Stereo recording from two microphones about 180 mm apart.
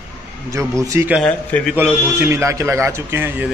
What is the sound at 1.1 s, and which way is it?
Speech, 5° left (ahead or behind).